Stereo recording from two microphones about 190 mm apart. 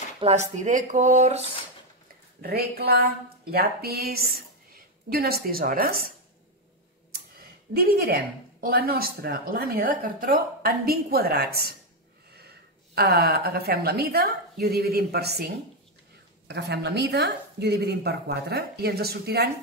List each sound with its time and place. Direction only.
0.2 s speech: 35° right (ahead or behind)
2.4 s a woman's voice: 55° right (ahead or behind)
7.7 s a woman's voice: 55° right (ahead or behind)